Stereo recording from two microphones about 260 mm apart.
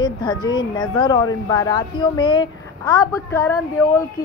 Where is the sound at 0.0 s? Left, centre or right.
Centre.